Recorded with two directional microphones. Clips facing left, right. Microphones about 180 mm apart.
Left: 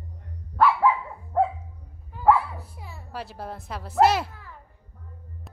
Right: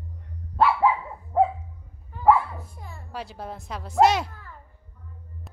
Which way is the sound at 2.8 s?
5° left (ahead or behind).